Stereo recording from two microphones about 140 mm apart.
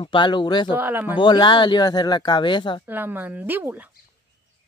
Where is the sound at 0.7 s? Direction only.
15° right (ahead or behind).